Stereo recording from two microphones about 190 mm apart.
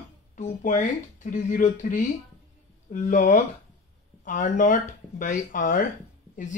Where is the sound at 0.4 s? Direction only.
40° left (ahead or behind).